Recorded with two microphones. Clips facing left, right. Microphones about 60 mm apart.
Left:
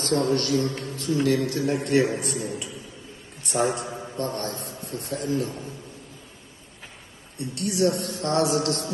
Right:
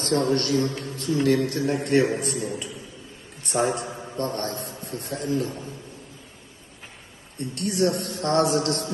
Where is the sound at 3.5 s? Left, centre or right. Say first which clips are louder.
Even; right.